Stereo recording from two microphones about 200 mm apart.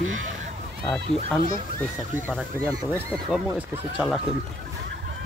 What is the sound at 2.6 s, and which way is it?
Speech, 5° left (ahead or behind).